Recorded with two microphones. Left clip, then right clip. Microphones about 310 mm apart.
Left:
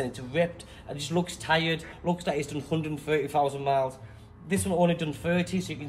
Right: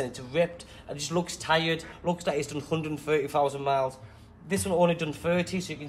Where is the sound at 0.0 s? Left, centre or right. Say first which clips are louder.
Right 1 dB; centre.